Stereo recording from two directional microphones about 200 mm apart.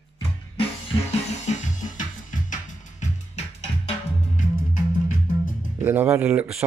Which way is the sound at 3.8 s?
40° left (ahead or behind).